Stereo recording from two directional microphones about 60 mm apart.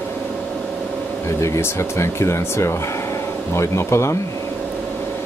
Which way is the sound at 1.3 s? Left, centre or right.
Left.